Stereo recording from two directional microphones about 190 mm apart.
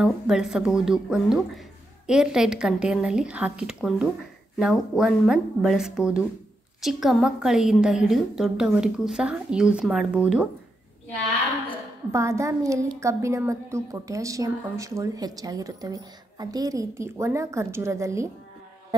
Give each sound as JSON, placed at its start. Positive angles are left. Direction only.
{"t": 0.0, "sound": "speech", "side_deg": -5}
{"t": 12.1, "sound": "a woman's voice", "side_deg": -15}